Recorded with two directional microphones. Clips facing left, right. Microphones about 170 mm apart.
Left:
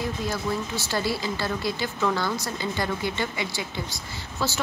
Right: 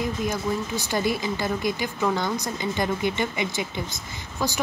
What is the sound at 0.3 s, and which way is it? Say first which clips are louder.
Speech: right 2 dB; 15° right (ahead or behind).